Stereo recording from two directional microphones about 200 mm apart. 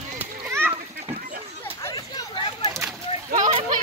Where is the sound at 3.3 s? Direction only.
35° right (ahead or behind).